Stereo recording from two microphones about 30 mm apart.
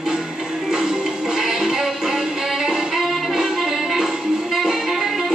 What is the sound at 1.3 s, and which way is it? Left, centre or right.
Music, centre.